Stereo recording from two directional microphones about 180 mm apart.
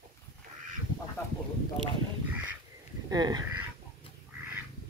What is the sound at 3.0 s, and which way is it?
Speech, 20° right (ahead or behind).